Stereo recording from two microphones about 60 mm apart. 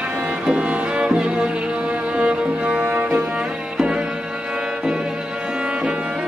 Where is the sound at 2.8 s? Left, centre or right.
Right.